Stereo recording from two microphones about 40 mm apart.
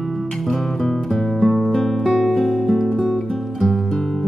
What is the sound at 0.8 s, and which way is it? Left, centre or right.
Music, centre.